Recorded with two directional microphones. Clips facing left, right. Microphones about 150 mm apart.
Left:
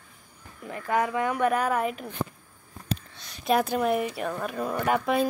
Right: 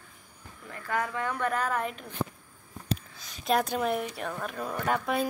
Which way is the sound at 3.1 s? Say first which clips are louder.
Left 3 dB; centre (ahead or behind).